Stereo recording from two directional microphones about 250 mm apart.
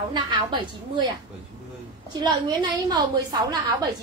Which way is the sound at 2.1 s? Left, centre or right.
Centre.